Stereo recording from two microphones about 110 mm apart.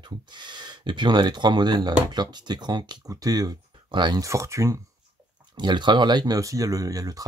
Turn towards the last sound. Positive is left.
turn(degrees=-35)  # may be behind; listen again after turning